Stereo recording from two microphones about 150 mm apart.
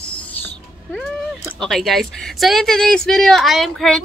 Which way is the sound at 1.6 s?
Centre (ahead or behind).